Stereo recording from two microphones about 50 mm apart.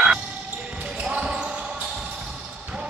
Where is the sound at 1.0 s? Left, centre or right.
Right.